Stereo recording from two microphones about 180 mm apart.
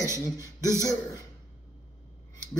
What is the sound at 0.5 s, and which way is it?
Speech, 15° right (ahead or behind).